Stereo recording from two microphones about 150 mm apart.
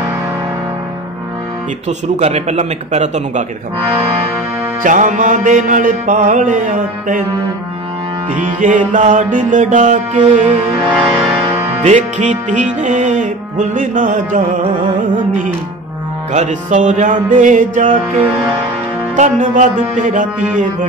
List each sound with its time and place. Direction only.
1.9 s speech: 45° right (ahead or behind)
4.8 s music: 60° right (ahead or behind)
8.4 s music: 60° right (ahead or behind)
11.8 s music: 50° right (ahead or behind)
16.3 s music: 55° right (ahead or behind)
19.1 s music: 55° right (ahead or behind)